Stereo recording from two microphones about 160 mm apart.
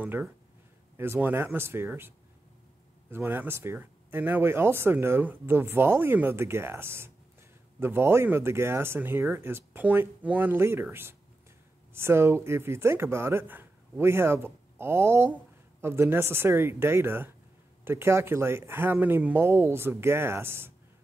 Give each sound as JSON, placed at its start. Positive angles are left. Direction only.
{"t": 0.0, "sound": "speech", "side_deg": -15}